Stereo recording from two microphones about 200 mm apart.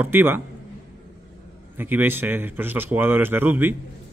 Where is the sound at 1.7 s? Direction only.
10° right (ahead or behind).